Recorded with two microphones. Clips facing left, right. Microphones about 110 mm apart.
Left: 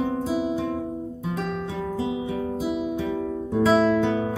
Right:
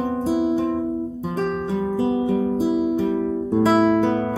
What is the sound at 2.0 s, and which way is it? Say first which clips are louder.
Guitar: right 8 dB; 35° right (ahead or behind).